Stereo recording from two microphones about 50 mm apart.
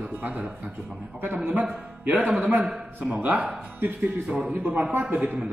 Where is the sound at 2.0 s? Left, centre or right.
Right.